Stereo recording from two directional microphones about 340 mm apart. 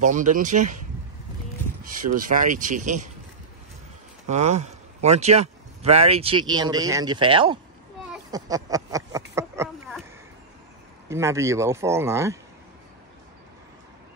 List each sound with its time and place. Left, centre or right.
0.0 s speech: right
1.8 s speech: right
4.3 s speech: centre
8.1 s a sound: centre
11.1 s speech: centre